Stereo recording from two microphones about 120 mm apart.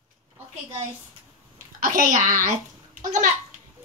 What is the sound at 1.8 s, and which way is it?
Speech, 90° right.